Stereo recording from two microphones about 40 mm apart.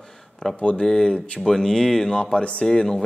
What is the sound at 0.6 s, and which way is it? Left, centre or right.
Speech, left.